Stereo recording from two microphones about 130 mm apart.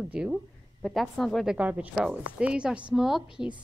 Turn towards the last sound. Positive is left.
turn(degrees=-5)  # may be behind; listen again after turning